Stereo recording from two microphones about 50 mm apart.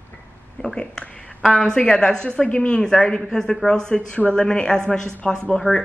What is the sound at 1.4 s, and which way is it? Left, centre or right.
Speech, centre.